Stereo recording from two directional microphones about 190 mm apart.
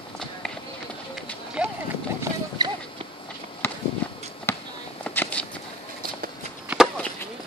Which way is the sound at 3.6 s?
10° left (ahead or behind).